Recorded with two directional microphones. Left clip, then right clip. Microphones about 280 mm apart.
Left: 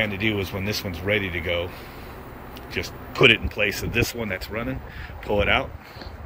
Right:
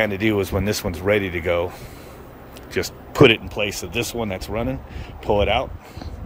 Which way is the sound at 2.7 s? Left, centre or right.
Right.